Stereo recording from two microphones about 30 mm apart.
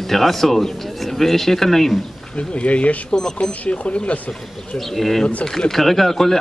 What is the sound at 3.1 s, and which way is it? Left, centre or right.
Speech, left.